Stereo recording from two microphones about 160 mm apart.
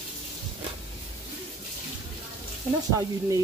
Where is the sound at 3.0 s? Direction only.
20° right (ahead or behind).